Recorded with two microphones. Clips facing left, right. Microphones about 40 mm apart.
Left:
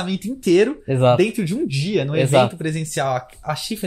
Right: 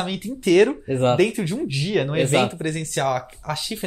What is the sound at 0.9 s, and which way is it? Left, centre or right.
Speech, centre.